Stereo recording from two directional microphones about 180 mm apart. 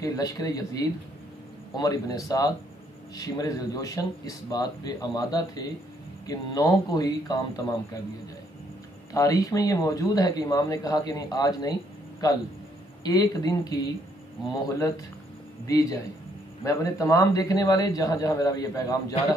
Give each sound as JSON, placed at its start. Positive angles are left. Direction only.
{"t": 0.0, "sound": "speech", "side_deg": 20}
{"t": 9.1, "sound": "speech", "side_deg": 20}
{"t": 15.6, "sound": "speech", "side_deg": 20}